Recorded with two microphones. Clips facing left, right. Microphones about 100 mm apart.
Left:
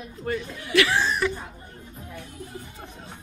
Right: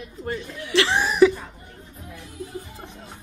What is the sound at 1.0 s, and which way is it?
Speech, 5° right (ahead or behind).